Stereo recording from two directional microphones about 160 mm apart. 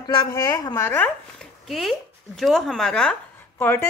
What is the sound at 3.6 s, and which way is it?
Speech, 15° left (ahead or behind).